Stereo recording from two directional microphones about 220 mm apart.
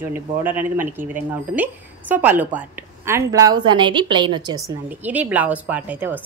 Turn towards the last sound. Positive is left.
turn(degrees=-5)  # may be behind; listen again after turning